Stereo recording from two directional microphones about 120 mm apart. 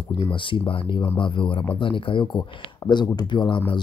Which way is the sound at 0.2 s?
45° left (ahead or behind).